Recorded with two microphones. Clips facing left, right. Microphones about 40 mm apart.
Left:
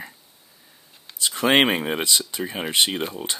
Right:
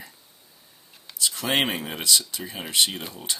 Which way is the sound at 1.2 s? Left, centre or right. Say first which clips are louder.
Left 6 dB; left.